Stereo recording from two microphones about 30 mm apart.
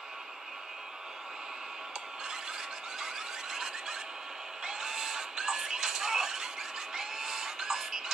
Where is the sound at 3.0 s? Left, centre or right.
Centre.